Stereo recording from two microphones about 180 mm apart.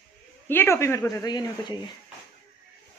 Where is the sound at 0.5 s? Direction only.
15° left (ahead or behind).